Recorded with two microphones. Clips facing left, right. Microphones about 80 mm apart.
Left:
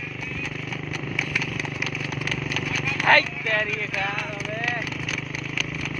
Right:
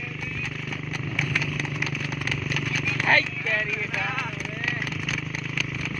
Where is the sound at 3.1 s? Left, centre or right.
Left.